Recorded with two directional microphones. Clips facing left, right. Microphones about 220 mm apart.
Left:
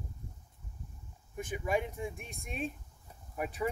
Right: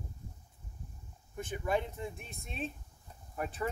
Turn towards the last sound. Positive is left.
turn(degrees=10)  # may be behind; listen again after turning